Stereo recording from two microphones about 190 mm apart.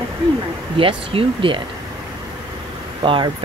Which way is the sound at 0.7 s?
30° right (ahead or behind).